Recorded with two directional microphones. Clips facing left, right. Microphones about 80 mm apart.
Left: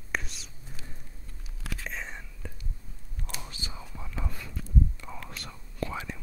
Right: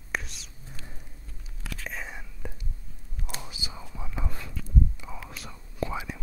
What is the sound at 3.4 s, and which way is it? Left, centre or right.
Whispering, centre.